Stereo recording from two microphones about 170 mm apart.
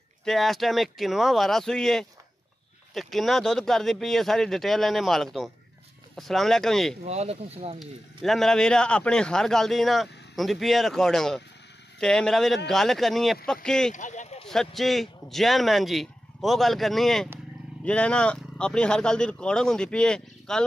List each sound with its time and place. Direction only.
0.2 s speech: centre (ahead or behind)
7.1 s speech: 40° right (ahead or behind)
7.8 s speech: centre (ahead or behind)
13.9 s a sound: 45° left (ahead or behind)
14.5 s speech: centre (ahead or behind)